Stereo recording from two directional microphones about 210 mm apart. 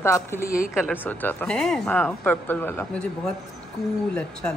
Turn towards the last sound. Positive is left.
turn(degrees=5)  # may be behind; listen again after turning